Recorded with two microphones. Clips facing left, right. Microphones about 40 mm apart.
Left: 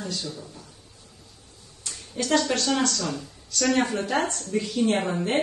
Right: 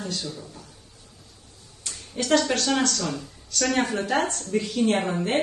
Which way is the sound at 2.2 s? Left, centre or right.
Right.